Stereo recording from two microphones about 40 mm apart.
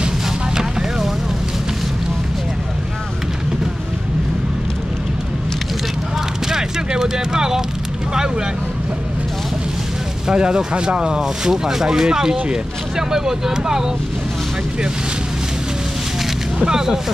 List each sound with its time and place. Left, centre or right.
0.6 s vehicle: centre
6.5 s a sound: centre
10.2 s speech: right
16.5 s speech: centre